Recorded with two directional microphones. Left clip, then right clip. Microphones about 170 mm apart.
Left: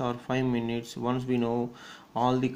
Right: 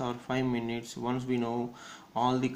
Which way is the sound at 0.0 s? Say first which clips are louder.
Left 3 dB; 30° left (ahead or behind).